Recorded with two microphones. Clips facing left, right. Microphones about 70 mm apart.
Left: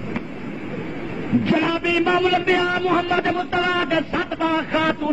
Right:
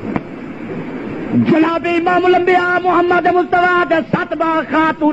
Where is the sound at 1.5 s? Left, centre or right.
Right.